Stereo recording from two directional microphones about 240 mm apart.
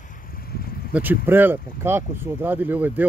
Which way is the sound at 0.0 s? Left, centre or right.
Left.